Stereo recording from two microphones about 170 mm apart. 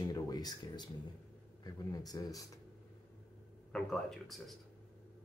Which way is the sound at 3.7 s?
5° left (ahead or behind).